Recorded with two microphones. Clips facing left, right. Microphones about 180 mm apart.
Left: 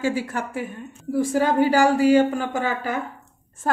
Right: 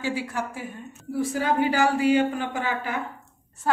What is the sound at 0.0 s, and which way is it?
A woman's voice, 45° left (ahead or behind).